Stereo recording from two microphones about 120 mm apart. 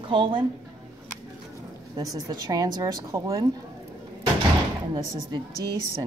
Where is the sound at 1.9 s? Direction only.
35° right (ahead or behind).